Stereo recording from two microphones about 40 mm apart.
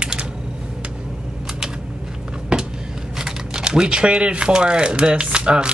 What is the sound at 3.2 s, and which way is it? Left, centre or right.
Speech, centre.